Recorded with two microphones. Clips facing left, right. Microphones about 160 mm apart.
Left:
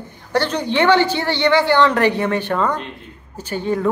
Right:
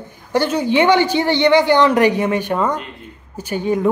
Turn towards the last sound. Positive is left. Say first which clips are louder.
# right 2 dB
turn(degrees=-15)  # may be behind; listen again after turning